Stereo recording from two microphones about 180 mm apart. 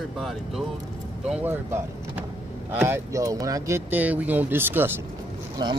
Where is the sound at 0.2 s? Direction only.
Centre (ahead or behind).